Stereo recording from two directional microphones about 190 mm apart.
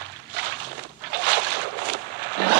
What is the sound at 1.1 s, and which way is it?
Boat, 65° right (ahead or behind).